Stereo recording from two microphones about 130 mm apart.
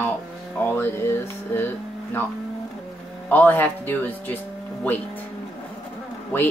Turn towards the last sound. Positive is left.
turn(degrees=15)  # may be behind; listen again after turning